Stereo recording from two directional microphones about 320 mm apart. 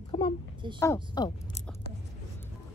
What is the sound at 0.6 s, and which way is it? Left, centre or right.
Speech, centre.